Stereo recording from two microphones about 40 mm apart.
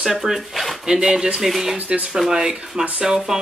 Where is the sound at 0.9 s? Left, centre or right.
Centre.